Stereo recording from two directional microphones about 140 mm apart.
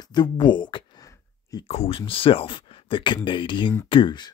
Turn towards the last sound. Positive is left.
turn(degrees=35)  # may be behind; listen again after turning